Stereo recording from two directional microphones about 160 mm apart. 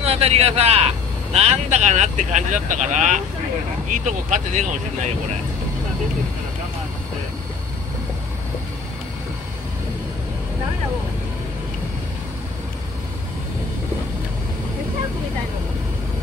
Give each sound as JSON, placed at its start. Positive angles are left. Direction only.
{"t": 0.0, "sound": "speech", "side_deg": -40}